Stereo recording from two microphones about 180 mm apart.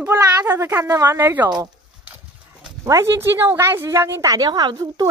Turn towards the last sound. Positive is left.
turn(degrees=-20)  # may be behind; listen again after turning